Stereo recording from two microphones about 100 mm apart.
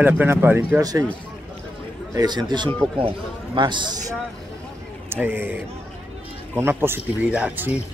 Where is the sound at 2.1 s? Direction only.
45° right (ahead or behind).